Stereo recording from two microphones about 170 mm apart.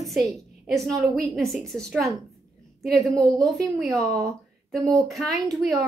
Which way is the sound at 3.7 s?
Centre (ahead or behind).